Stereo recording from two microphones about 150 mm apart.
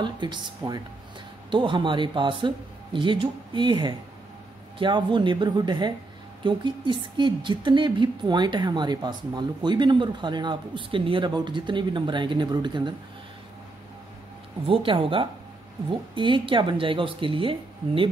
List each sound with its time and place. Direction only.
0.0 s a woman's voice: 30° right (ahead or behind)
14.7 s a woman's voice: 35° right (ahead or behind)